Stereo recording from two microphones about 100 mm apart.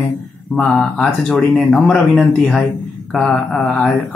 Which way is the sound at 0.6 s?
10° left (ahead or behind).